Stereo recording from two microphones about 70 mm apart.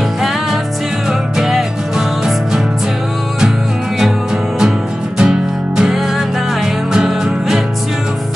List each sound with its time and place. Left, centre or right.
1.4 s music: centre
5.2 s music: centre